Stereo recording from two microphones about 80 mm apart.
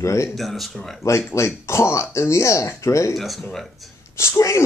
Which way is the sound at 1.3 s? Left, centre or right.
Left.